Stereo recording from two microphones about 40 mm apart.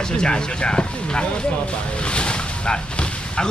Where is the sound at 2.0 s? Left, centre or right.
Left.